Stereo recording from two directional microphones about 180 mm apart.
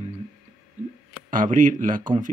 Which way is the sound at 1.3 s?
45° right (ahead or behind).